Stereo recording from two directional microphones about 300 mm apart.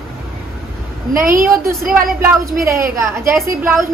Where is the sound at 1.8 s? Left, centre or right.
Right.